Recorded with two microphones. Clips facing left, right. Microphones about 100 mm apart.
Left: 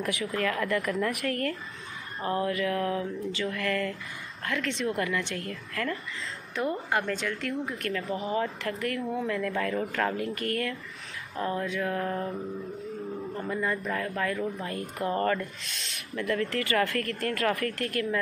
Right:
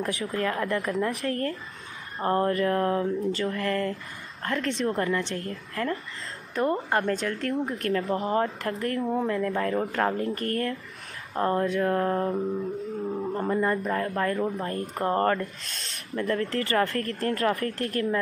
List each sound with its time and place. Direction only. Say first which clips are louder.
0.2 s speech: even; 30° right (ahead or behind)
2.2 s speech: right 4 dB; 45° right (ahead or behind)
8.1 s mantra: right 3 dB; 50° right (ahead or behind)
8.6 s speech: right 3 dB; 35° right (ahead or behind)
11.3 s mantra: right 6 dB; 50° right (ahead or behind); by 12.4 s 35° right (ahead or behind)
13.3 s speech: right 5 dB; 35° right (ahead or behind)